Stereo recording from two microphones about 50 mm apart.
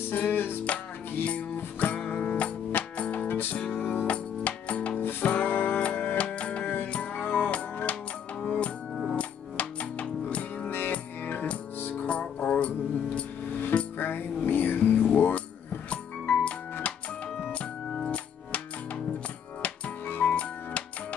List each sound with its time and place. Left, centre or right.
0.1 s music: left
0.7 s music: left
3.3 s music: left
5.8 s music: left
6.6 s music: left
6.9 s music: left
7.2 s music: left
11.9 s music: left
13.5 s music: left
15.9 s music: left
17.5 s organ: left
20.1 s music: left